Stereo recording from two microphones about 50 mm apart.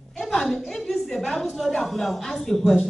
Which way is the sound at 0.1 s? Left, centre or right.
Centre.